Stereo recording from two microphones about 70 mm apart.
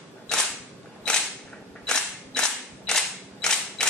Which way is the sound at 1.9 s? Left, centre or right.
Centre.